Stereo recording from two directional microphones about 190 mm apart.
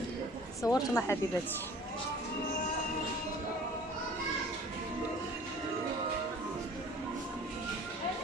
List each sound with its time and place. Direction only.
0.6 s speech: 15° left (ahead or behind)